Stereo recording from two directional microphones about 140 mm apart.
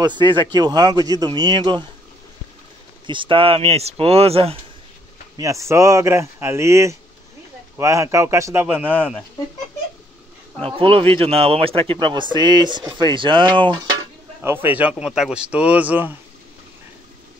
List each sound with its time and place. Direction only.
0.0 s speech: 35° right (ahead or behind)
3.1 s speech: 35° right (ahead or behind)
5.4 s speech: 20° right (ahead or behind)
10.6 s speech: 40° right (ahead or behind)
14.4 s speech: 15° right (ahead or behind)